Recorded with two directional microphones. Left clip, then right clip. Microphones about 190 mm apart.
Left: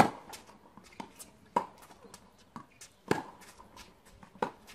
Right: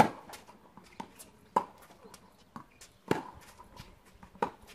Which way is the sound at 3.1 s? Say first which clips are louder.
Even; 15° left (ahead or behind).